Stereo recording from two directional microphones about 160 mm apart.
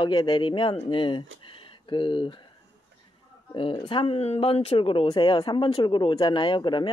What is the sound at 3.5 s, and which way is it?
A man's voice, 30° left (ahead or behind).